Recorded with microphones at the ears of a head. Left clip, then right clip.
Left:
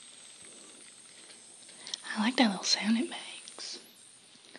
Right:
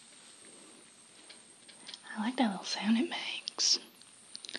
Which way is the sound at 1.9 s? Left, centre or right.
Left.